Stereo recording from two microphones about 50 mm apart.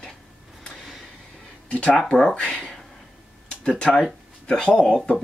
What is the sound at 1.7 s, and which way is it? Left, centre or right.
Speech, left.